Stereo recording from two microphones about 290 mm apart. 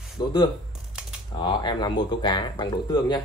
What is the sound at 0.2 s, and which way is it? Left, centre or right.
Speech, centre.